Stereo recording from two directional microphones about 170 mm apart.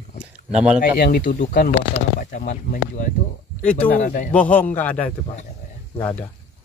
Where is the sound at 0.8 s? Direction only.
60° left (ahead or behind).